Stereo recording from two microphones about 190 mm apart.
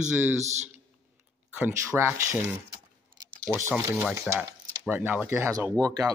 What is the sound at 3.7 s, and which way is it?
Speech, 10° right (ahead or behind).